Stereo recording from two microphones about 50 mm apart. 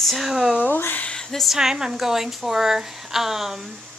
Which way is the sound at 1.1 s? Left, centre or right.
Centre.